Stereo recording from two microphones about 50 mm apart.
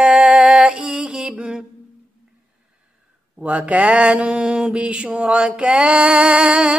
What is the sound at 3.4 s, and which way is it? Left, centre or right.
Mantra, right.